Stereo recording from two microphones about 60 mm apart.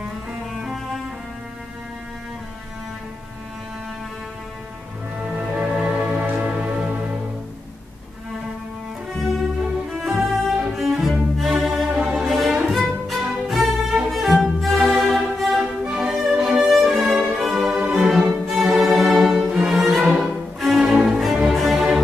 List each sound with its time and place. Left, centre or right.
5.3 s music: centre
5.9 s music: right
9.1 s cello: centre
9.8 s music: centre
10.8 s cello: centre
13.5 s music: centre
15.8 s music: centre